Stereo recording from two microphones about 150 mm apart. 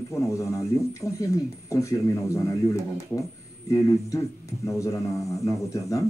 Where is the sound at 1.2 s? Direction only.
20° left (ahead or behind).